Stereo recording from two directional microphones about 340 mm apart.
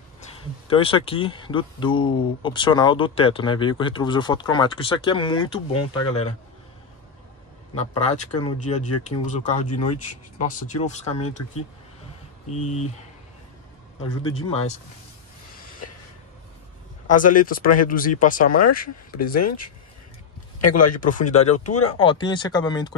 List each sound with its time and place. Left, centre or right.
0.7 s speech: centre
8.1 s speech: centre
12.5 s speech: centre
14.0 s speech: centre
17.1 s speech: left
17.6 s speech: left
17.8 s speech: left
20.8 s speech: left